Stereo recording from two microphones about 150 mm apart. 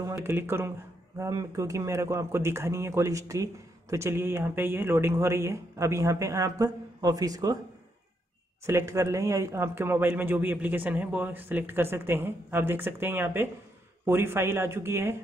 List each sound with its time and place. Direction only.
0.0 s speech: 15° right (ahead or behind)
8.6 s speech: 20° right (ahead or behind)